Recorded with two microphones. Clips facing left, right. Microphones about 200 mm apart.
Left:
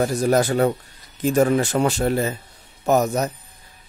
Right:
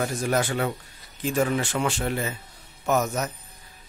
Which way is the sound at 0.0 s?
35° left (ahead or behind).